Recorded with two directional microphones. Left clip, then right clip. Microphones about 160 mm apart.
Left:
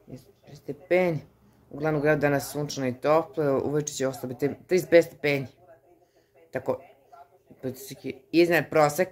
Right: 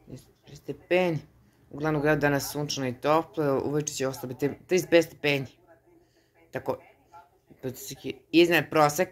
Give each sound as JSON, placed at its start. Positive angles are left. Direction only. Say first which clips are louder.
{"t": 0.1, "sound": "a sound", "louder": "left 1 dB", "side_deg": 15}
{"t": 1.8, "sound": "speech", "louder": "left 1 dB", "side_deg": 20}
{"t": 6.5, "sound": "speech", "louder": "left 3 dB", "side_deg": 20}